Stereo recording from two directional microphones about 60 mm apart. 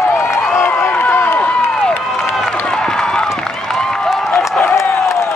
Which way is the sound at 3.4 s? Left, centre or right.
Centre.